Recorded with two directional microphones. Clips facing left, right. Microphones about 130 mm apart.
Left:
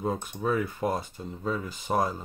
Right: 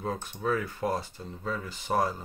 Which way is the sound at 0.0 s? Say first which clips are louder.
Left 2 dB; 15° left (ahead or behind).